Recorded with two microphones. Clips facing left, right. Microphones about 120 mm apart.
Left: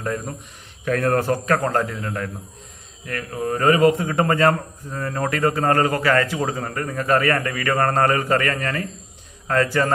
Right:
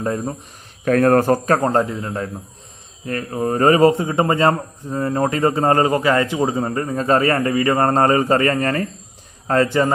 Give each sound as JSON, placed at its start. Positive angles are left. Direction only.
{"t": 0.0, "sound": "a man's voice", "side_deg": -30}
{"t": 0.8, "sound": "a man's voice", "side_deg": -45}